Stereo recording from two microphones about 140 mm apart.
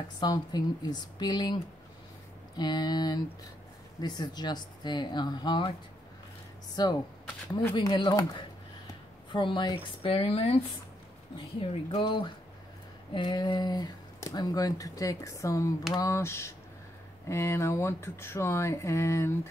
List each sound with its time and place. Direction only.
0.2 s speech: 30° left (ahead or behind)
6.7 s speech: 30° left (ahead or behind)